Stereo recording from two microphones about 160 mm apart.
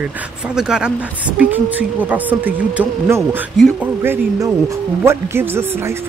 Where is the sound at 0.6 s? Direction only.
5° right (ahead or behind).